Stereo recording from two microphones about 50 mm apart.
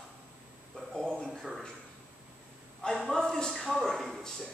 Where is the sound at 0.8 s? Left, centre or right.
Centre.